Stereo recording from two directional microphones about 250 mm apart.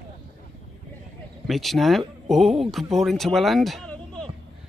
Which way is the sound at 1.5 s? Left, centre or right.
Centre.